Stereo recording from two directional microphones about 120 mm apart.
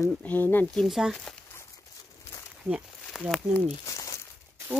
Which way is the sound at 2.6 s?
10° right (ahead or behind).